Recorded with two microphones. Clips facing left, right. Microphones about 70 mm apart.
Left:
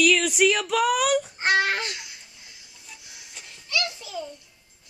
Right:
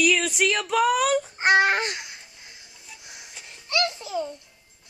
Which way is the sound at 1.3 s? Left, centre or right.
Right.